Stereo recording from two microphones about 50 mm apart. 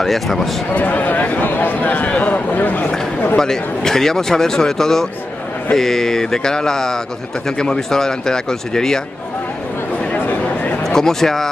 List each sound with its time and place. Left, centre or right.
0.0 s speech: centre
0.7 s speech: left
3.3 s speech: centre
10.1 s a sound: left
10.8 s speech: centre